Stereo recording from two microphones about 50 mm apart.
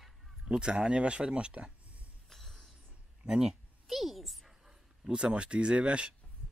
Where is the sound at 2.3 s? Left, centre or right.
Centre.